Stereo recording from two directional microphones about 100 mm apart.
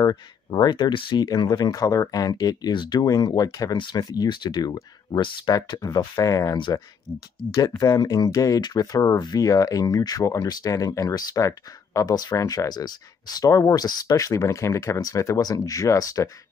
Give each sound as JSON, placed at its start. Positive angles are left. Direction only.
{"t": 0.5, "sound": "speech", "side_deg": 50}